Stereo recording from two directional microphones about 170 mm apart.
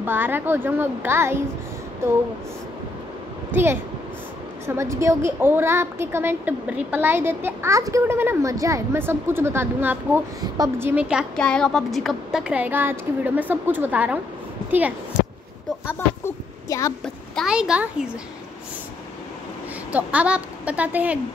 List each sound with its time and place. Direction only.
0.0 s a woman's voice: 10° right (ahead or behind)
3.5 s a woman's voice: 10° right (ahead or behind)
11.3 s a woman's voice: 5° left (ahead or behind)
15.9 s a woman's voice: 15° left (ahead or behind)
17.0 s a child's voice: centre (ahead or behind)
19.9 s a woman's voice: 10° right (ahead or behind)